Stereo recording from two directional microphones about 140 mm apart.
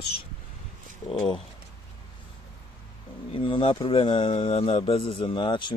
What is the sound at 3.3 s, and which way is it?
Speech, 40° left (ahead or behind).